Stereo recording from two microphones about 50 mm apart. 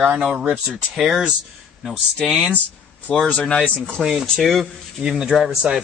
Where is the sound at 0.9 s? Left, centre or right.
Centre.